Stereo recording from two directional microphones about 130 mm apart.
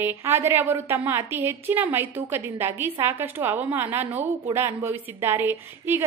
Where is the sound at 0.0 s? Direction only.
15° right (ahead or behind).